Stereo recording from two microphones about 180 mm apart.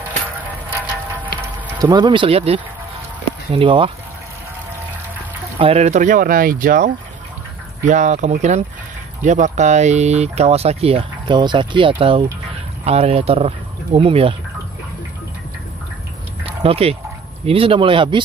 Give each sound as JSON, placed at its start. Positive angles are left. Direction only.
{"t": 1.4, "sound": "speech", "side_deg": -20}
{"t": 5.6, "sound": "speech", "side_deg": -35}
{"t": 16.4, "sound": "dog", "side_deg": -35}
{"t": 17.5, "sound": "speech", "side_deg": -30}